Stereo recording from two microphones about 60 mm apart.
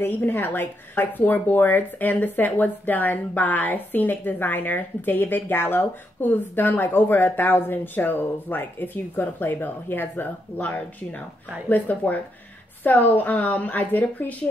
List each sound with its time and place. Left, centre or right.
0.0 s a woman's voice: left